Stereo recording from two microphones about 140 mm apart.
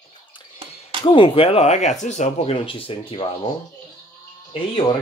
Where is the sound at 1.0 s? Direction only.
40° left (ahead or behind).